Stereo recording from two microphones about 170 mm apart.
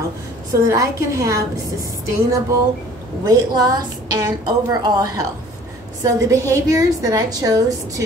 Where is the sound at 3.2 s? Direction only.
20° right (ahead or behind).